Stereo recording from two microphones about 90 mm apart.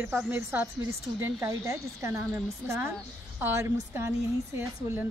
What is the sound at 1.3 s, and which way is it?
Speech, 35° right (ahead or behind).